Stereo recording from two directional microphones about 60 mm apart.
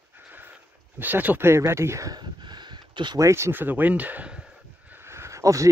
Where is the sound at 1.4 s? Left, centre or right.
Right.